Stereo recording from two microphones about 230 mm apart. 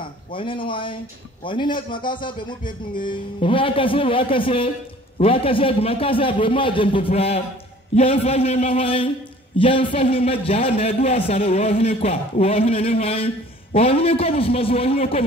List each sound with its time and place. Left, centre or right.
0.3 s speech: left